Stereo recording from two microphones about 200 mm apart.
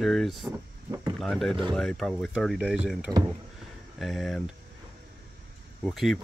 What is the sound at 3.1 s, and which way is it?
Speech, 15° right (ahead or behind).